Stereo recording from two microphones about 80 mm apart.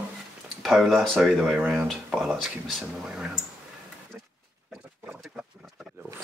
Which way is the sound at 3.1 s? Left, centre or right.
Centre.